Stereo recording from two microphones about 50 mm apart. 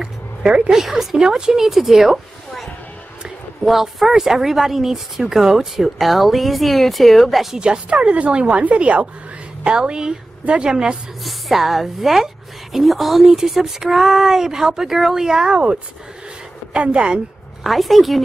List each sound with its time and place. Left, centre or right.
0.0 s a sound: centre
0.7 s speech: centre
3.6 s speech: centre
7.5 s a woman's voice: centre
11.2 s a woman's voice: centre
17.6 s speech: centre